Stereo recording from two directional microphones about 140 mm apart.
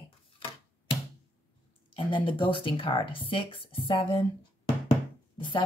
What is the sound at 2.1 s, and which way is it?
Speech, 35° left (ahead or behind).